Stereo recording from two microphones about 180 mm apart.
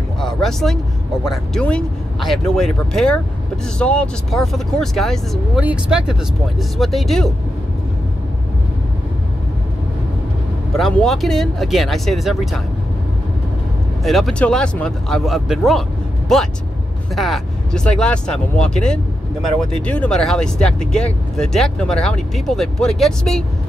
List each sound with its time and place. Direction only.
0.2 s a sound: centre (ahead or behind)
1.2 s speech: centre (ahead or behind)
10.7 s speech: centre (ahead or behind)
14.0 s speech: centre (ahead or behind)
17.1 s speech: centre (ahead or behind)